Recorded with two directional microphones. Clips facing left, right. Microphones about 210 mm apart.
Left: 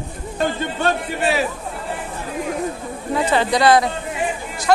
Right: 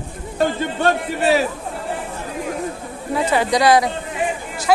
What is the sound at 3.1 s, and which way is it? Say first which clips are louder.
Speech: even; 10° right (ahead or behind).